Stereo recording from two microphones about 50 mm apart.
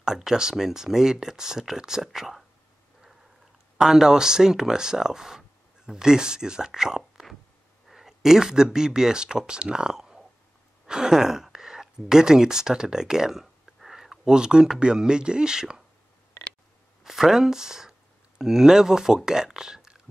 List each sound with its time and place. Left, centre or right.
0.0 s speech: centre
3.7 s speech: centre
17.0 s speech: centre